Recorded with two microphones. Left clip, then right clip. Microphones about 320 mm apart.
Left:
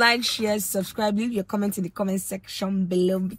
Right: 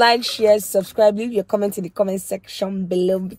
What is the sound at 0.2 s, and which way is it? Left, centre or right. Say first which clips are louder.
Speech: right 9 dB; centre.